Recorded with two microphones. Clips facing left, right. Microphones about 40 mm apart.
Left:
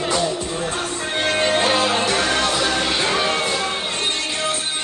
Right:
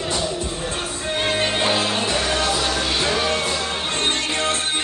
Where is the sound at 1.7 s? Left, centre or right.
Centre.